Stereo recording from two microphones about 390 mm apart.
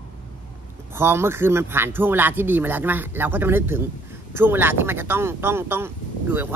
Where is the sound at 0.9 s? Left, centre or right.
Centre.